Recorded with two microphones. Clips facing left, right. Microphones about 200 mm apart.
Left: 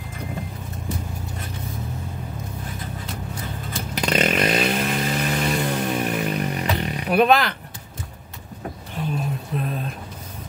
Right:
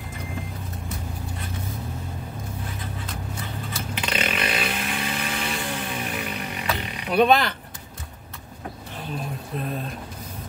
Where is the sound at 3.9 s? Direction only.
40° left (ahead or behind).